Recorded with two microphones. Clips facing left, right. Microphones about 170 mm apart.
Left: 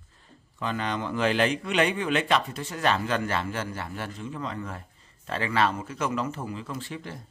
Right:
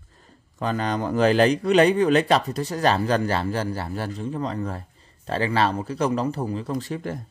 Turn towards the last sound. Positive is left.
turn(degrees=-45)  # may be behind; listen again after turning